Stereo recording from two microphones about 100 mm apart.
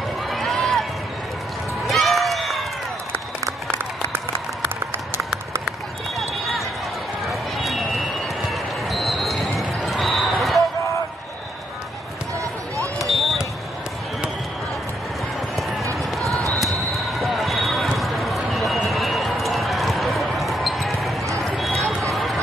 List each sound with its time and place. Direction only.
0.3 s run: centre (ahead or behind)
1.9 s run: centre (ahead or behind)
5.7 s run: centre (ahead or behind)
8.5 s basketball bounce: centre (ahead or behind)
12.4 s basketball bounce: 30° right (ahead or behind)
13.0 s basketball bounce: centre (ahead or behind)
16.5 s basketball bounce: centre (ahead or behind)
18.5 s run: centre (ahead or behind)
21.4 s a sound: centre (ahead or behind)
22.1 s run: centre (ahead or behind)